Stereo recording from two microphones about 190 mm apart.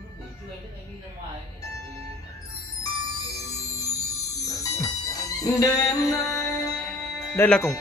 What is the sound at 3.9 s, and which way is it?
Music, 15° left (ahead or behind).